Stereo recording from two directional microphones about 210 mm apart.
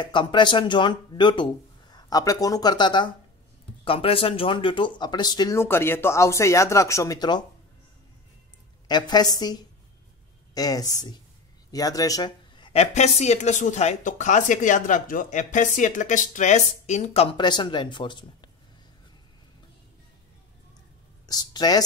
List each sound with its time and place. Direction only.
0.0 s speech: 20° left (ahead or behind)
8.8 s a woman's voice: 20° left (ahead or behind)
21.3 s speech: 20° left (ahead or behind)